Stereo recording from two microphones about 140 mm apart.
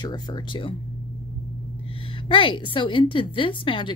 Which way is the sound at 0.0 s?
30° left (ahead or behind).